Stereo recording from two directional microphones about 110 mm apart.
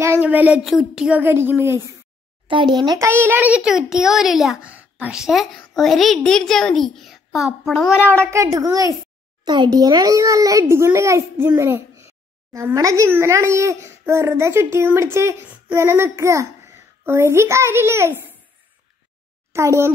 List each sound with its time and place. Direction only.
0.2 s a woman's voice: 15° right (ahead or behind)
1.2 s a child's voice: 20° right (ahead or behind)
2.4 s a child's voice: 50° right (ahead or behind)
3.0 s a child's voice: 20° right (ahead or behind); by 4.6 s centre (ahead or behind)
4.6 s a woman's voice: 10° right (ahead or behind)
8.3 s a child's voice: 30° right (ahead or behind)
19.5 s a child's voice: 25° right (ahead or behind)